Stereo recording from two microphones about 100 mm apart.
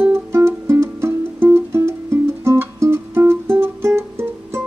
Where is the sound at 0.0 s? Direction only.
25° right (ahead or behind).